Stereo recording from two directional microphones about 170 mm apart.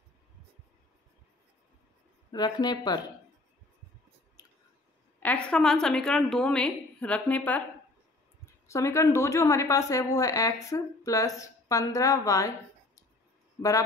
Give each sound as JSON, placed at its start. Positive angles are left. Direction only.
{"t": 2.3, "sound": "a woman's voice", "side_deg": 25}
{"t": 5.2, "sound": "a woman's voice", "side_deg": 5}
{"t": 8.6, "sound": "a woman's voice", "side_deg": 15}